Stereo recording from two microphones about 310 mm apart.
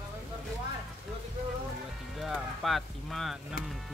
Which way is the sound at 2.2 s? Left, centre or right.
Centre.